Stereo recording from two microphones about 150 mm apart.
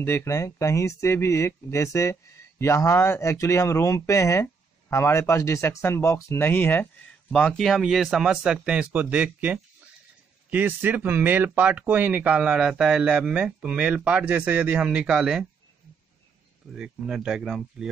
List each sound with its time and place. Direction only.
0.0 s speech: 15° left (ahead or behind); by 15.4 s 5° right (ahead or behind)
16.7 s speech: 5° right (ahead or behind)